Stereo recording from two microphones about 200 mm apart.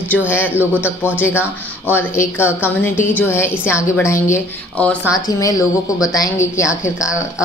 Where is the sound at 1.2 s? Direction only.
10° left (ahead or behind).